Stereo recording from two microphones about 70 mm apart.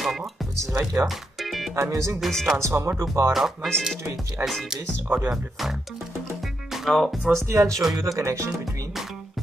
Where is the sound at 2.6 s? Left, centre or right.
Right.